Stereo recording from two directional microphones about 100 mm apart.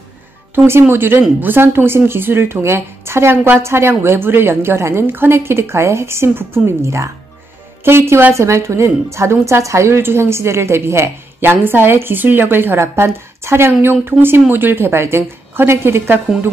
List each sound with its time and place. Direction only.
0.7 s a woman's voice: 25° right (ahead or behind)